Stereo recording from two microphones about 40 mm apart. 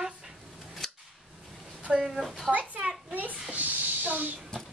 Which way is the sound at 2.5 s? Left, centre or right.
Right.